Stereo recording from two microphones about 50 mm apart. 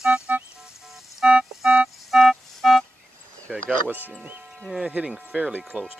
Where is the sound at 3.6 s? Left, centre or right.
Right.